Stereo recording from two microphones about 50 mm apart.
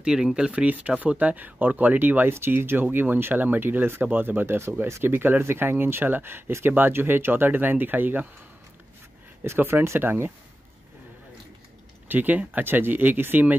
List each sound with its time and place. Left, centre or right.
0.0 s speech: centre; by 2.3 s right
2.3 s speech: right
4.6 s speech: right
5.0 s speech: right
9.4 s speech: right
12.1 s speech: right